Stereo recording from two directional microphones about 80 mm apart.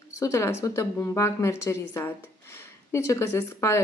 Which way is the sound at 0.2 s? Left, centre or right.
Left.